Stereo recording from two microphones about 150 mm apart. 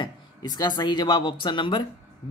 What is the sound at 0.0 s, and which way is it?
Speech, 30° left (ahead or behind).